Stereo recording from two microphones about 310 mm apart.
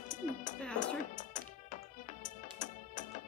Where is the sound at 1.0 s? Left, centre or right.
Left.